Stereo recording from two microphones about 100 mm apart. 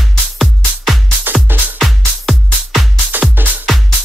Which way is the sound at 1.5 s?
20° right (ahead or behind).